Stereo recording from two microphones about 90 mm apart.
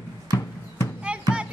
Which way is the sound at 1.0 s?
10° right (ahead or behind).